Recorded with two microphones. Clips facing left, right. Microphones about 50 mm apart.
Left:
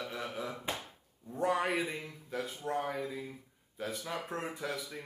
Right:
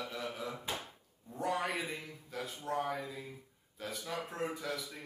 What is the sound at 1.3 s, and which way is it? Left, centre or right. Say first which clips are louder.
A man's voice: left 4 dB; centre.